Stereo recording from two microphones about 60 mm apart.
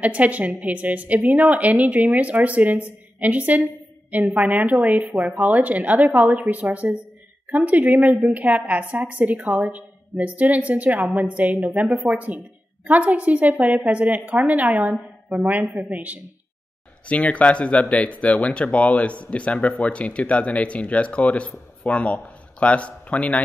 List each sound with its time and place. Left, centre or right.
0.0 s a woman's voice: right
17.1 s speech: left